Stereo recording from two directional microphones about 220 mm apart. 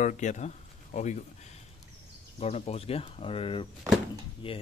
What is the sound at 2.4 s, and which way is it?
Speech, 30° left (ahead or behind).